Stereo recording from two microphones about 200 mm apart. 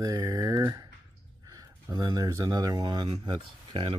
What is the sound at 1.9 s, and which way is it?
Speech, 20° right (ahead or behind).